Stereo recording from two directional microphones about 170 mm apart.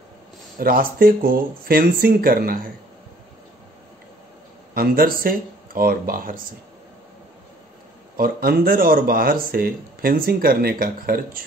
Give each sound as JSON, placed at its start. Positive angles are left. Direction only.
{"t": 0.6, "sound": "speech", "side_deg": -60}
{"t": 4.7, "sound": "speech", "side_deg": -60}
{"t": 8.2, "sound": "speech", "side_deg": -60}